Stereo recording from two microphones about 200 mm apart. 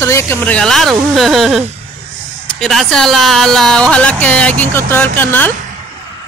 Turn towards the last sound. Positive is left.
turn(degrees=10)  # may be behind; listen again after turning